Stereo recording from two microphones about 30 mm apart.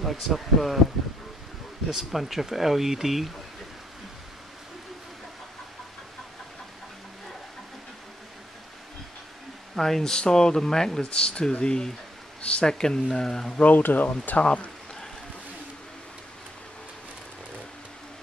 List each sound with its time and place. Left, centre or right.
0.0 s speech: centre
1.9 s speech: centre
9.8 s speech: centre
10.1 s speech: left
11.1 s speech: left
12.6 s speech: left
13.6 s speech: left
14.4 s speech: left